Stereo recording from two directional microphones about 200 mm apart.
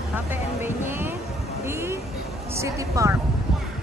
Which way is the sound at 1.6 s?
10° right (ahead or behind).